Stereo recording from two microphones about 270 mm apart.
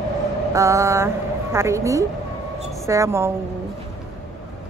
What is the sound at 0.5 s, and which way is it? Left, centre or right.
A woman's voice, centre.